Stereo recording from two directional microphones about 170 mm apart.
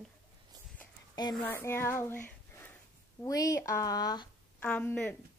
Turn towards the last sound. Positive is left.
turn(degrees=10)  # may be behind; listen again after turning